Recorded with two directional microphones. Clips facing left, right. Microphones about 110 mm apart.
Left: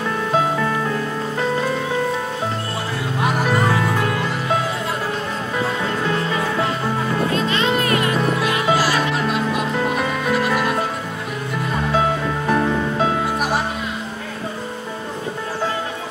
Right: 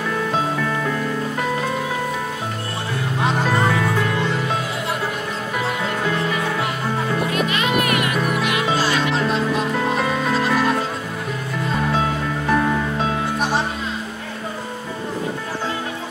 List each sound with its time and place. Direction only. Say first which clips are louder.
7.2 s music: left 2 dB; 30° left (ahead or behind)
8.7 s music: left 1 dB; 25° right (ahead or behind)